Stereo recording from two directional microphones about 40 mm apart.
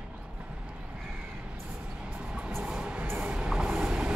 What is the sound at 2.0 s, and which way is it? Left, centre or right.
Vehicle, right.